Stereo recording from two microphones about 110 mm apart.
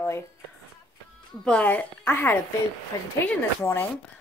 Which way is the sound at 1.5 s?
15° left (ahead or behind).